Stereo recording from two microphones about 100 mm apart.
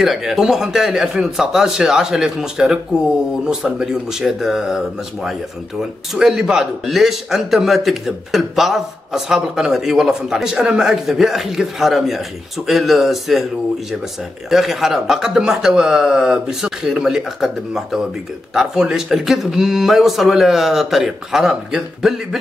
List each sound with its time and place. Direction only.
0.0 s a man's voice: centre (ahead or behind)
14.5 s a man's voice: centre (ahead or behind)